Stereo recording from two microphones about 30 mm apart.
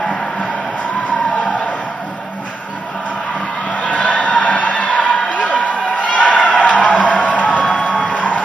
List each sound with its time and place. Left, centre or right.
3.7 s crowd: left
5.4 s a sound: left
6.6 s music: left